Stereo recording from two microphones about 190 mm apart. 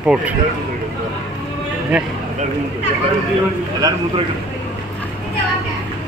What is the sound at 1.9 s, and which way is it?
Speech, 5° right (ahead or behind).